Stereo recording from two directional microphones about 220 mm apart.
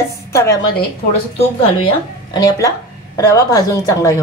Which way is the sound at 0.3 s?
10° left (ahead or behind).